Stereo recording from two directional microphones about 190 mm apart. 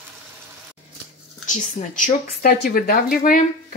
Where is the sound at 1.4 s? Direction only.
40° left (ahead or behind).